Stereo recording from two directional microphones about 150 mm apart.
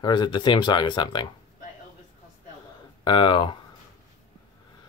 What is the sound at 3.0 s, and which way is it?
Speech, 35° left (ahead or behind).